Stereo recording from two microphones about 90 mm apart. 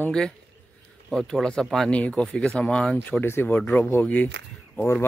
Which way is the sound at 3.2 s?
25° left (ahead or behind).